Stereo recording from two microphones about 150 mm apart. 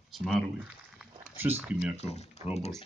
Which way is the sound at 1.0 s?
10° right (ahead or behind).